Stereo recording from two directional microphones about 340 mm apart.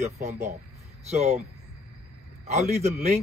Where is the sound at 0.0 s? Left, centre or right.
Centre.